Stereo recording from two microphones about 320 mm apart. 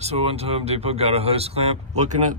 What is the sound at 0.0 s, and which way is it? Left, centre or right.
Speech, centre.